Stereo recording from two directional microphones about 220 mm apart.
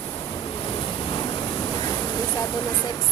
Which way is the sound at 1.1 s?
20° left (ahead or behind).